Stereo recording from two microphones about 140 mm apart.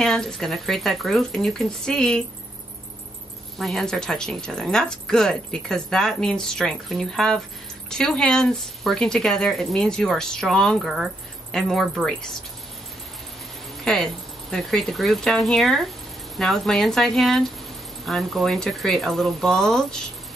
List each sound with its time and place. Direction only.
0.0 s speech: 5° left (ahead or behind)
3.5 s speech: centre (ahead or behind)
13.9 s speech: 5° left (ahead or behind)